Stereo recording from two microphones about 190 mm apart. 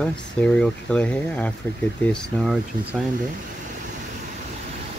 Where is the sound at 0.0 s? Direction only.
5° left (ahead or behind).